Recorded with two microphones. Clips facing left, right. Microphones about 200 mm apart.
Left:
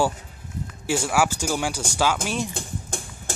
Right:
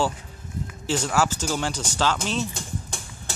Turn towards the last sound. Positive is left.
turn(degrees=50)  # may be behind; listen again after turning